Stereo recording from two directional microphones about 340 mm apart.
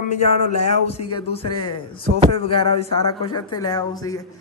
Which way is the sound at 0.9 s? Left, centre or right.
Centre.